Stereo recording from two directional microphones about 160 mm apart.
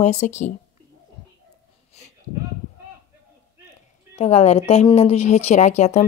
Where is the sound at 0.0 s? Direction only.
45° left (ahead or behind).